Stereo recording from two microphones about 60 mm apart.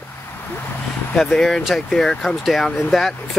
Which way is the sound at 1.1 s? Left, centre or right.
Centre.